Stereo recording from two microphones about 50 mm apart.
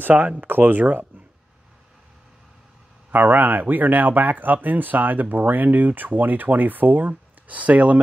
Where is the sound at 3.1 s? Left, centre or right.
Right.